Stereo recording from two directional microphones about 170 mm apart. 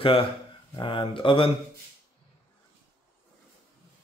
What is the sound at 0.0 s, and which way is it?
Speech, 30° left (ahead or behind).